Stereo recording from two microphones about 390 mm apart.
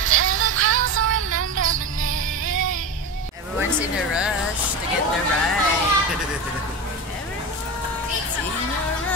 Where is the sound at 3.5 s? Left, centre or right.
Centre.